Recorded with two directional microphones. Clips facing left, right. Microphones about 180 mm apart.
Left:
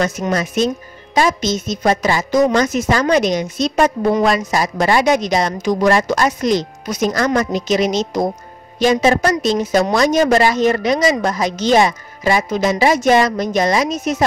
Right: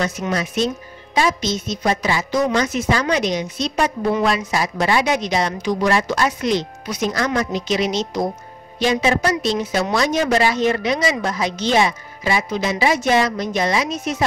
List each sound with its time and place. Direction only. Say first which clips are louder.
0.0 s a woman's voice: left 4 dB; 45° left (ahead or behind)